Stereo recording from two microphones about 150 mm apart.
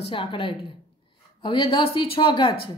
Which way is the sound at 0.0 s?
35° left (ahead or behind).